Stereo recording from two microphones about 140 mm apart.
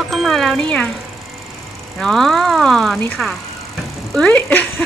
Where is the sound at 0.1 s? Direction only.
Centre (ahead or behind).